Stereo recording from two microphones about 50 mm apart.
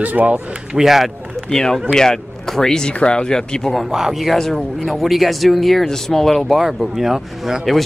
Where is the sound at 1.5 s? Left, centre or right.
Centre.